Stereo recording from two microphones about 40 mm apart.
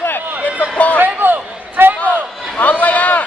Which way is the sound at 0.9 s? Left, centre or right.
Right.